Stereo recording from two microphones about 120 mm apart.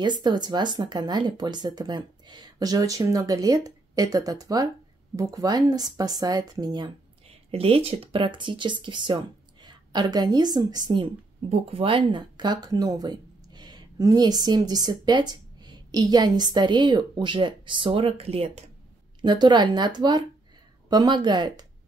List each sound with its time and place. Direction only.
0.0 s speech: 40° right (ahead or behind)
7.2 s speech: 55° right (ahead or behind)
19.2 s speech: 35° right (ahead or behind)